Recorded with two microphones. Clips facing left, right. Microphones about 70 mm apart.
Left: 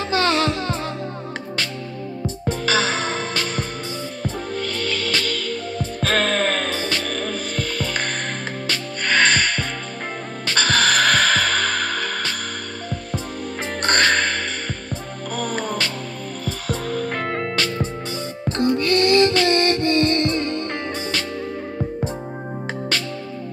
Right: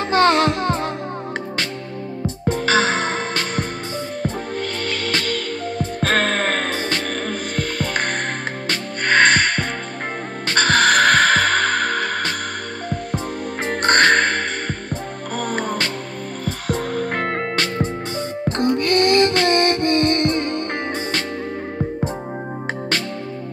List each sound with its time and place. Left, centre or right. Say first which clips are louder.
0.1 s music: right 5 dB; right
2.4 s music: right 3 dB; right
13.8 s music: right 4 dB; right